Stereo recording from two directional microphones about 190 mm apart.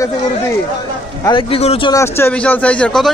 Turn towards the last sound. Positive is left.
turn(degrees=5)  # may be behind; listen again after turning